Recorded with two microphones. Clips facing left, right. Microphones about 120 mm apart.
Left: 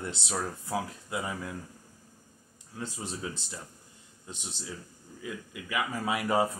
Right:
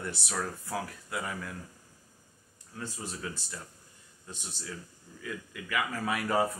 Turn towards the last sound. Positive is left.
turn(degrees=20)  # may be behind; listen again after turning